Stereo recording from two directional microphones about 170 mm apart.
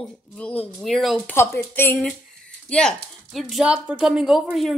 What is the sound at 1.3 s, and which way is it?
Speech, 15° left (ahead or behind).